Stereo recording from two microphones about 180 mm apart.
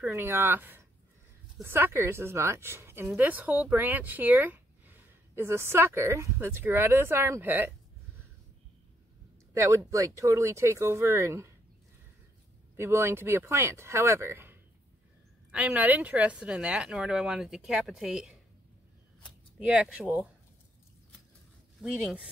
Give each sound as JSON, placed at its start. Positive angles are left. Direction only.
{"t": 0.0, "sound": "a woman's voice", "side_deg": -15}
{"t": 9.5, "sound": "a woman's voice", "side_deg": -15}
{"t": 12.7, "sound": "a woman's voice", "side_deg": -15}
{"t": 19.6, "sound": "a woman's voice", "side_deg": -5}
{"t": 21.8, "sound": "speech", "side_deg": -5}